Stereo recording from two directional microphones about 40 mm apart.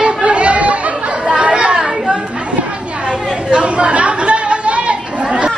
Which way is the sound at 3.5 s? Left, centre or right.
Right.